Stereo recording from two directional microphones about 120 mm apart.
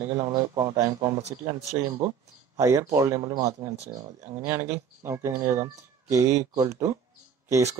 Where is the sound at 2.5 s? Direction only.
25° right (ahead or behind).